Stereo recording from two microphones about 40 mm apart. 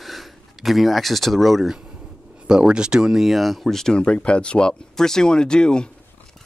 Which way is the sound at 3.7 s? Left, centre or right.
Centre.